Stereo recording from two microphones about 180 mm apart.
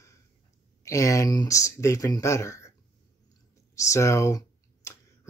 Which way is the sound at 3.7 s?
15° left (ahead or behind).